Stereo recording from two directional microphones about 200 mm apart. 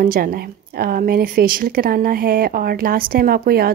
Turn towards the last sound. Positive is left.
turn(degrees=-50)  # may be behind; listen again after turning